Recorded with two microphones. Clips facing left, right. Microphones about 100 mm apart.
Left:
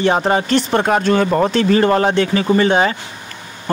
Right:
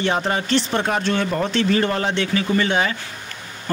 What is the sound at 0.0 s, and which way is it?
Speech, 35° left (ahead or behind).